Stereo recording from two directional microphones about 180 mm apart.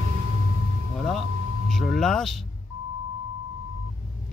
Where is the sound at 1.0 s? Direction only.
5° left (ahead or behind).